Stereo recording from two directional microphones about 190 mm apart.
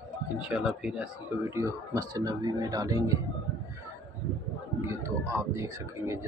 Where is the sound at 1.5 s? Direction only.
15° right (ahead or behind).